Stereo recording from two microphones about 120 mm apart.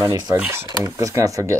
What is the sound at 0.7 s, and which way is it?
Speech, 30° right (ahead or behind).